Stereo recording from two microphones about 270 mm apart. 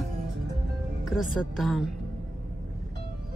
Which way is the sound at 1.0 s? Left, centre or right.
Centre.